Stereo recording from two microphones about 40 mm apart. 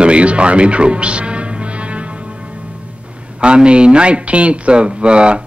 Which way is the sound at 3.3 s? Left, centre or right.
Right.